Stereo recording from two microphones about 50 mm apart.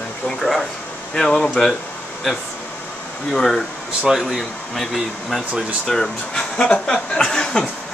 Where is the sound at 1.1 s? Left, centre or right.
Centre.